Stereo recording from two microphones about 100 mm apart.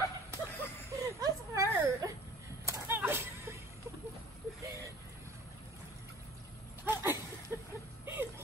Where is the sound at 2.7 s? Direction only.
20° right (ahead or behind).